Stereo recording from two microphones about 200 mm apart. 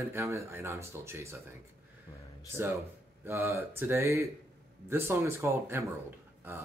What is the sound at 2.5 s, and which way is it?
Speech, 15° right (ahead or behind).